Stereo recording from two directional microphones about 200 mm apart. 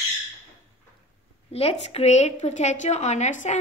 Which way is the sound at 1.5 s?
30° left (ahead or behind).